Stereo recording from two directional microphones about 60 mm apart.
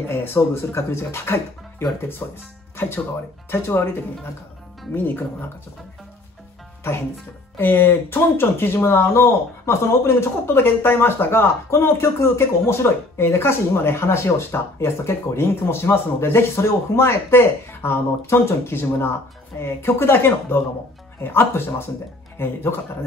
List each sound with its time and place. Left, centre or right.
0.0 s speech: left
3.4 s speech: left
7.5 s speech: left